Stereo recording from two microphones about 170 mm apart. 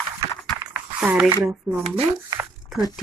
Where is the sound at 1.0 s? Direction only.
10° right (ahead or behind).